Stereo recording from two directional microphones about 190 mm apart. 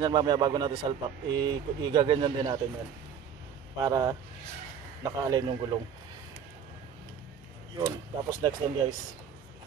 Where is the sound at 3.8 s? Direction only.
20° right (ahead or behind).